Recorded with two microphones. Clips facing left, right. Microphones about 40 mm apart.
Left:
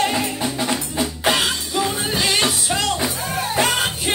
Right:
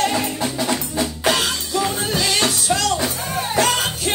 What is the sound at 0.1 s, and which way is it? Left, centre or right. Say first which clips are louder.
Music: even; centre.